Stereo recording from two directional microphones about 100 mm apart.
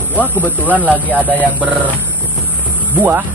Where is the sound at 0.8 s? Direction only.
15° right (ahead or behind).